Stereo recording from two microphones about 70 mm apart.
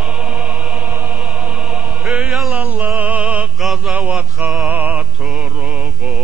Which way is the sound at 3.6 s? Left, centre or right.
Centre.